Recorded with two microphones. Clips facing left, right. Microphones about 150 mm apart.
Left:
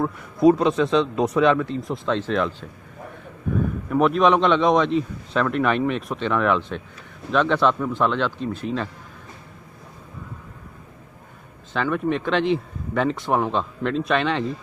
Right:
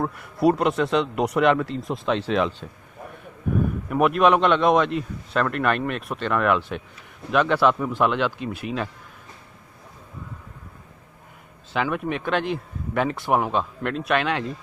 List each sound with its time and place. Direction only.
0.0 s speech: 5° right (ahead or behind)
3.9 s speech: 5° right (ahead or behind)
11.7 s speech: 10° right (ahead or behind)